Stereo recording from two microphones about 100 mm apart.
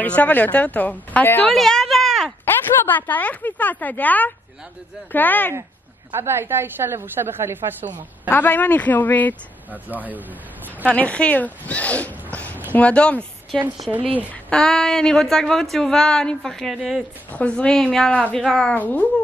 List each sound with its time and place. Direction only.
0.0 s speech: 15° left (ahead or behind)
1.5 s a sound: 5° left (ahead or behind)
2.4 s speech: 20° left (ahead or behind)
6.1 s a woman's voice: 25° right (ahead or behind)
8.3 s speech: 20° left (ahead or behind)
9.8 s speech: 15° right (ahead or behind)
10.9 s a woman's voice: 15° left (ahead or behind); by 17.0 s 5° right (ahead or behind)
17.3 s a woman's voice: 15° left (ahead or behind)